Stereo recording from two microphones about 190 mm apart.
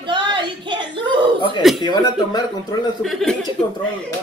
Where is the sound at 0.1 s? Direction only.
25° right (ahead or behind).